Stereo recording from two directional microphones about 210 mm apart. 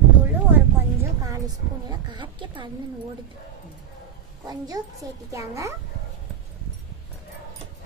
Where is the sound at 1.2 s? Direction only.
15° right (ahead or behind).